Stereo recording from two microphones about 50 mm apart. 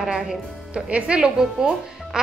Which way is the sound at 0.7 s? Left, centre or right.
Right.